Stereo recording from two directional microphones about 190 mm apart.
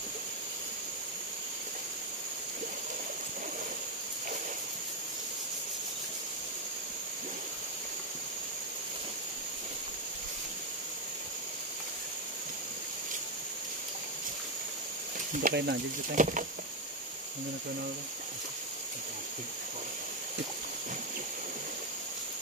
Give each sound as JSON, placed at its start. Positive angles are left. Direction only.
{"t": 15.4, "sound": "speech", "side_deg": -60}
{"t": 16.2, "sound": "speech", "side_deg": -40}